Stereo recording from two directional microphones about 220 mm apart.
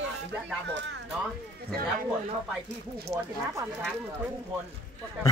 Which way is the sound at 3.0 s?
15° right (ahead or behind).